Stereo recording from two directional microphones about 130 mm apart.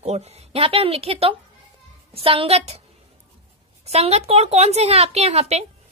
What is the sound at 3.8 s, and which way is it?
A woman's voice, 55° right (ahead or behind).